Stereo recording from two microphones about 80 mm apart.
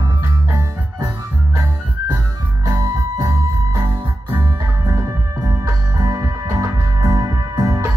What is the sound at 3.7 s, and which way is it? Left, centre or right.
Music, right.